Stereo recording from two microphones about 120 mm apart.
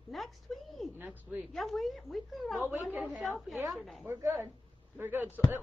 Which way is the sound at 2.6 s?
15° right (ahead or behind).